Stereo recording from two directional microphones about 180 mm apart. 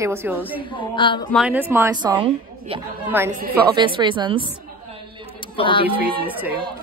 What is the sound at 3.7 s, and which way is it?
Speech, 25° right (ahead or behind).